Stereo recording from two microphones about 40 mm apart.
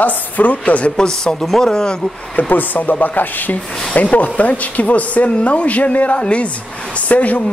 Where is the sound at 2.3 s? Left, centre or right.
Left.